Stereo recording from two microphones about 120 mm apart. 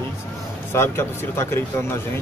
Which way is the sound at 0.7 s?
20° left (ahead or behind).